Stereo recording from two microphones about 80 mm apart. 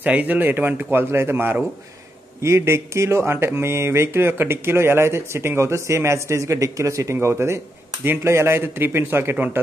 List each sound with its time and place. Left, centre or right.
0.0 s speech: centre